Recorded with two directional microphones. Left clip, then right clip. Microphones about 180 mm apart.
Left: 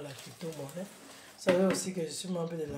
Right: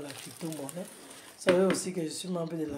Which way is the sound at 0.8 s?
35° right (ahead or behind).